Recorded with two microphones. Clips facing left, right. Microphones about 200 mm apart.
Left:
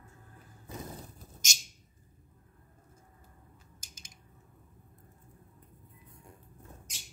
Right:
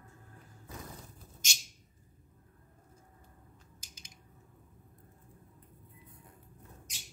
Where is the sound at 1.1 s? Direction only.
45° left (ahead or behind).